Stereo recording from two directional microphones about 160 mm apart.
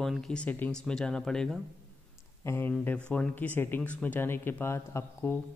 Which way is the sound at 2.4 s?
15° left (ahead or behind).